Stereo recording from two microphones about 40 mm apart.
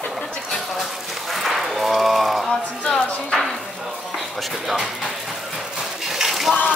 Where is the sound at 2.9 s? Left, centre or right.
Left.